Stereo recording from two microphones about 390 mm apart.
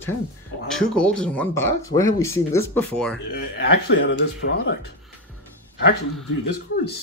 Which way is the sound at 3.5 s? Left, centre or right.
Left.